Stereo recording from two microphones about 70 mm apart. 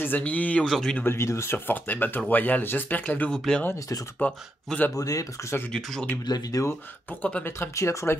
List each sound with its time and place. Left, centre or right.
0.0 s speech: left
0.7 s speech: centre
1.0 s speech: left
3.3 s speech: centre
4.2 s speech: left
4.9 s speech: left
5.7 s speech: centre
6.2 s speech: left
7.1 s speech: left
7.4 s speech: left